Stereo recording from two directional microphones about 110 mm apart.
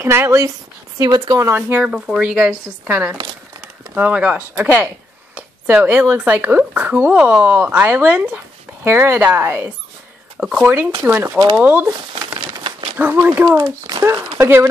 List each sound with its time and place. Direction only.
0.0 s speech: 25° right (ahead or behind)
1.7 s speech: 10° right (ahead or behind)
10.4 s speech: 10° right (ahead or behind)
11.0 s speech: 20° right (ahead or behind)
12.9 s speech: 20° right (ahead or behind)